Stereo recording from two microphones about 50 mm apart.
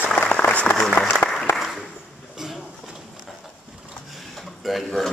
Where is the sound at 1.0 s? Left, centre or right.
Left.